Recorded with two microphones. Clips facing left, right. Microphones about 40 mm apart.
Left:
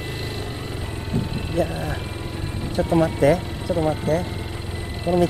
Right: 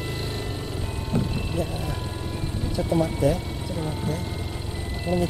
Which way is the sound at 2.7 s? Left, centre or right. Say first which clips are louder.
Left 5 dB; left.